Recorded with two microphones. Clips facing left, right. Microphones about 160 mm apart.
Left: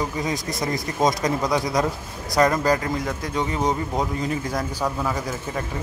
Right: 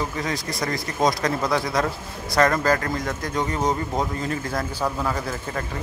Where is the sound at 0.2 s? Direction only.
20° left (ahead or behind).